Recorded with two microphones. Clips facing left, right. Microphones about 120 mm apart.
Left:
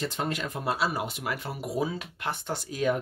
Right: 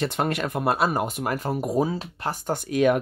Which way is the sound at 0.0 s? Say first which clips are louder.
Right 6 dB; 65° right (ahead or behind).